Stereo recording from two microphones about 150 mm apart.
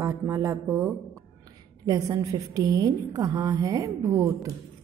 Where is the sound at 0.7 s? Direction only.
5° right (ahead or behind).